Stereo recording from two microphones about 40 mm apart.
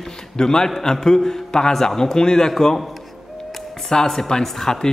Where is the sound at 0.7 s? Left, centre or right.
Centre.